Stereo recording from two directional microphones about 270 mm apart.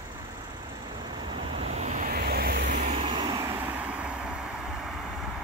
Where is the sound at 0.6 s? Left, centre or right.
Centre.